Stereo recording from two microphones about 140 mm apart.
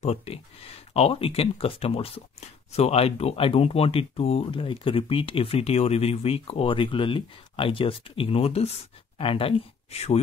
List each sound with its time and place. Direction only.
0.0 s speech: 50° left (ahead or behind)